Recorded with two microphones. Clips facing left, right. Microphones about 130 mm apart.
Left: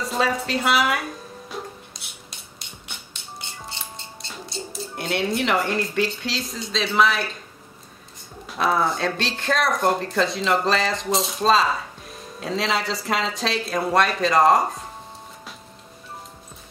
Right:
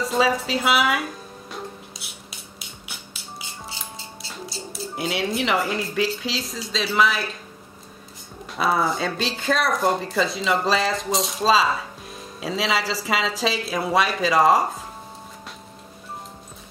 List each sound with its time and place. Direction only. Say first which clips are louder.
0.0 s speech: right 2 dB; centre (ahead or behind)
1.5 s music: even; 5° right (ahead or behind)
8.5 s speech: even; centre (ahead or behind)